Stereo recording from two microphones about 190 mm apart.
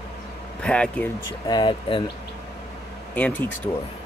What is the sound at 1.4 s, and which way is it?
Speech, 25° left (ahead or behind).